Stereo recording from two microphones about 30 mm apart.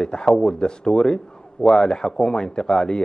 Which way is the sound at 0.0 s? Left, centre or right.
Left.